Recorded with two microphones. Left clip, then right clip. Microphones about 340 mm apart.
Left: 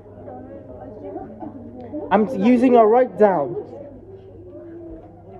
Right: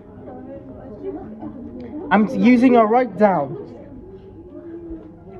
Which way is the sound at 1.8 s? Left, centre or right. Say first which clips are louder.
Even; centre.